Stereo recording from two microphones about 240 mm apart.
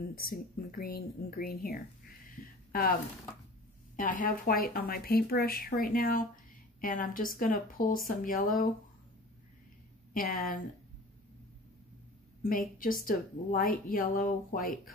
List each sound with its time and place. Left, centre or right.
0.1 s speech: left
2.3 s a sound: left
3.9 s speech: left
10.1 s speech: left
12.4 s speech: left